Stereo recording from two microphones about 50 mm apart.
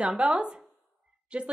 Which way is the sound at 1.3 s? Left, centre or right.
Right.